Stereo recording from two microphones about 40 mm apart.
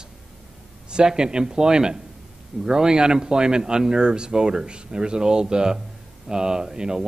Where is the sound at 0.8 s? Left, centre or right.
Right.